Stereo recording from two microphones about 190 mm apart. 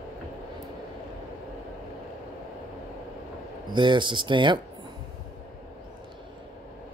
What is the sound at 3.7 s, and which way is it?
Speech, 25° right (ahead or behind).